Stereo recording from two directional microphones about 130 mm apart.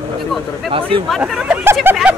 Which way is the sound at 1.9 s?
15° right (ahead or behind).